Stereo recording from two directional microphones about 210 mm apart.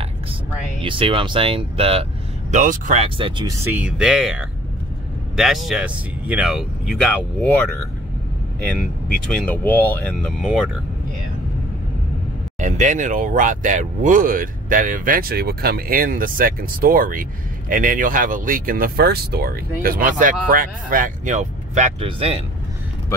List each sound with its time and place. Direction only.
0.8 s speech: 25° right (ahead or behind)
3.7 s speech: 5° right (ahead or behind)
8.6 s speech: 5° left (ahead or behind)
12.5 s speech: 35° right (ahead or behind)